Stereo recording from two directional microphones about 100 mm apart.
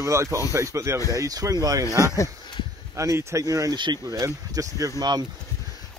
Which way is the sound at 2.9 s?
30° right (ahead or behind).